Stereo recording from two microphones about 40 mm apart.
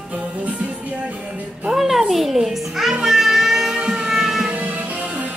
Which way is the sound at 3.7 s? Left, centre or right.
Centre.